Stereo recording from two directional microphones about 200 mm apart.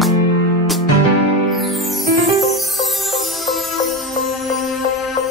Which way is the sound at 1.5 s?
Centre (ahead or behind).